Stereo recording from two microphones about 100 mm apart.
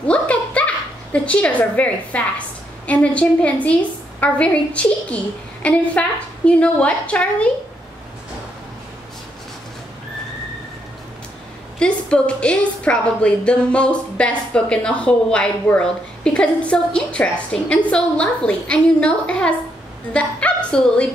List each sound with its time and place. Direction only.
0.0 s a sound: 10° left (ahead or behind)
2.9 s a woman's voice: 10° left (ahead or behind)
11.8 s a woman's voice: 10° left (ahead or behind)